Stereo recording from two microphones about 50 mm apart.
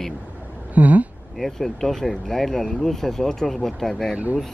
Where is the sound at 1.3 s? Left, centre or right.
Centre.